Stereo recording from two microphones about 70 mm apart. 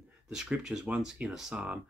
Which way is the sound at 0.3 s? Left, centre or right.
Centre.